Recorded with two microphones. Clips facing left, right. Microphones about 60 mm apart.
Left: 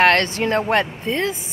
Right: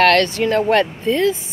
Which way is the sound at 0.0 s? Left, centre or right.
Left.